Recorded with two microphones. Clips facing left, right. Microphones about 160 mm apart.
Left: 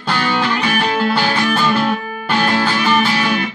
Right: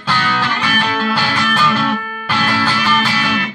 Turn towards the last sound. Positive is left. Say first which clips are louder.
# left 2 dB
turn(degrees=30)  # may be behind; listen again after turning